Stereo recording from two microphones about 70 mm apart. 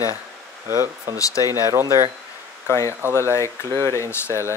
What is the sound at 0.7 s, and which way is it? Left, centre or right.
Speech, right.